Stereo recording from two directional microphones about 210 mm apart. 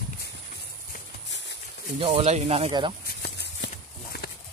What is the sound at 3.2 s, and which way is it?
Clip-clop, 50° left (ahead or behind).